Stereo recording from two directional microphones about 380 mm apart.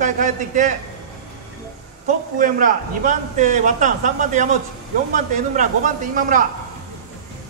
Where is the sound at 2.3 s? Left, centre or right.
Right.